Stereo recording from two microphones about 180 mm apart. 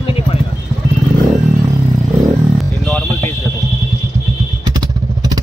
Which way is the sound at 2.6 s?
Centre (ahead or behind).